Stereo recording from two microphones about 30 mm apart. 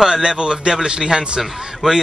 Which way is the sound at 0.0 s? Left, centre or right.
Right.